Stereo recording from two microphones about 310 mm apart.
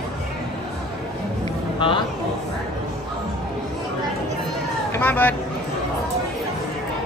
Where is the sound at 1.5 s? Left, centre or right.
Centre.